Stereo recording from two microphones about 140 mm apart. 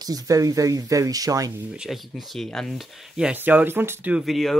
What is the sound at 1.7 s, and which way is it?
Speech, 5° right (ahead or behind).